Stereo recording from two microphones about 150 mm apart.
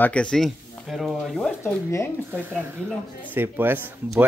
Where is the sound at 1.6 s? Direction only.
15° left (ahead or behind).